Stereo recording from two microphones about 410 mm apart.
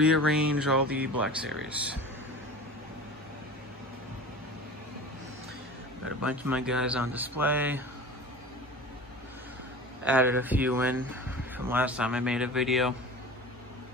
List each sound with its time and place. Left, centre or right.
0.0 s speech: centre
0.8 s speech: right
1.2 s speech: centre
6.0 s speech: centre
10.0 s speech: centre